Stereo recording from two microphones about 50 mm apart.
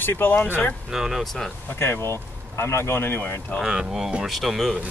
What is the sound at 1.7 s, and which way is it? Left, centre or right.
A man's voice, left.